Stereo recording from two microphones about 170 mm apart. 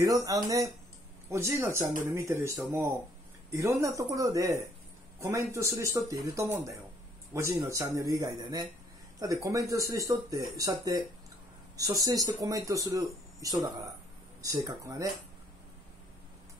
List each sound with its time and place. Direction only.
0.0 s speech: 20° right (ahead or behind)